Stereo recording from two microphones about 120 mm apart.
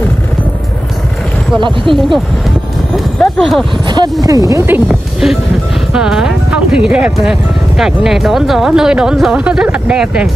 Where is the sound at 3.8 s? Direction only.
35° right (ahead or behind).